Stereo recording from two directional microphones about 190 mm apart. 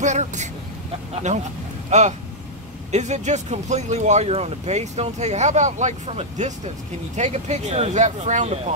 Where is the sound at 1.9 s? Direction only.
35° right (ahead or behind).